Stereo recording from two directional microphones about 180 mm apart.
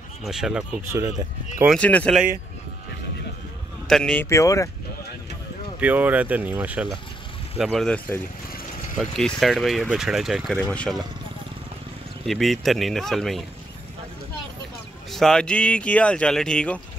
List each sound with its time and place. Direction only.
0.2 s speech: 5° right (ahead or behind)
1.8 s speech: 5° left (ahead or behind)
3.8 s speech: 5° left (ahead or behind)
5.8 s speech: 10° right (ahead or behind)
12.3 s speech: centre (ahead or behind)
15.0 s speech: centre (ahead or behind)